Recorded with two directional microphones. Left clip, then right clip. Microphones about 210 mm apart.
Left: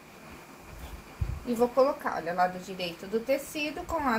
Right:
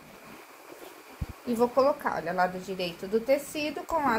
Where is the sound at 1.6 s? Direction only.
25° right (ahead or behind).